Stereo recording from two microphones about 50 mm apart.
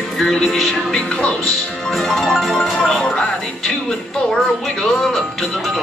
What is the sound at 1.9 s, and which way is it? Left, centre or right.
Music, centre.